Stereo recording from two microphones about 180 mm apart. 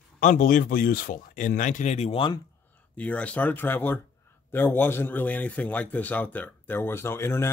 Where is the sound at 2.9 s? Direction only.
5° left (ahead or behind).